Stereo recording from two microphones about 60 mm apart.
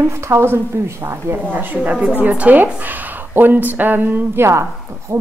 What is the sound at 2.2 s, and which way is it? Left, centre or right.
A woman's voice, right.